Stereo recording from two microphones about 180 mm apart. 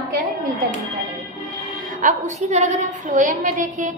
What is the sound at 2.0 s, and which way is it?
A woman's voice, 45° right (ahead or behind).